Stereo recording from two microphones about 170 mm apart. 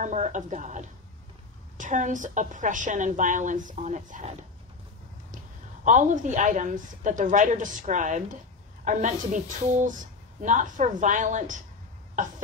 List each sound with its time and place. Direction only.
0.0 s a woman's voice: 45° right (ahead or behind)
5.9 s a woman's voice: 45° right (ahead or behind)